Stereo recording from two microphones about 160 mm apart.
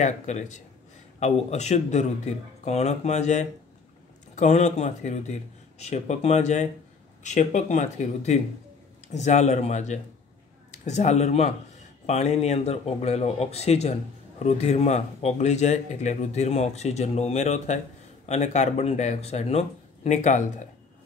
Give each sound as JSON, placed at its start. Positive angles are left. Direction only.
{"t": 0.0, "sound": "speech", "side_deg": 45}